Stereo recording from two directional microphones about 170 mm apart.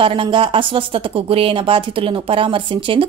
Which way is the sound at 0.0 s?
30° right (ahead or behind).